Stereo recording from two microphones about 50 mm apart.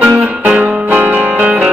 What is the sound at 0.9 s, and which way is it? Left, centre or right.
Music, right.